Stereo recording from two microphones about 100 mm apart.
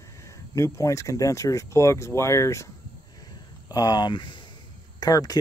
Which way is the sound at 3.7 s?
40° left (ahead or behind).